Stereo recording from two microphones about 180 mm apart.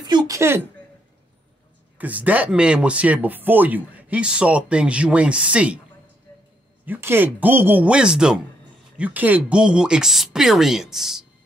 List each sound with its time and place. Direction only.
0.0 s a sound: 20° right (ahead or behind)
2.0 s speech: 10° right (ahead or behind)
6.9 s speech: 10° right (ahead or behind)